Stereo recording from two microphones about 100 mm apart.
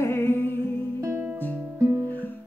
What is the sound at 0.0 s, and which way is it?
Music, 25° left (ahead or behind).